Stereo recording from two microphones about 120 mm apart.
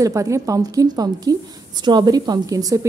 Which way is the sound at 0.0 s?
25° right (ahead or behind).